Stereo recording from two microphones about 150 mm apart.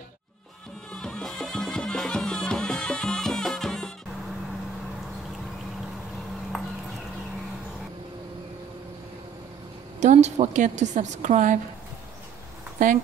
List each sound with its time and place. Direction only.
0.9 s music: 5° left (ahead or behind)
6.5 s clip-clop: centre (ahead or behind)
9.9 s a woman's voice: 50° right (ahead or behind)
12.7 s speech: 60° right (ahead or behind)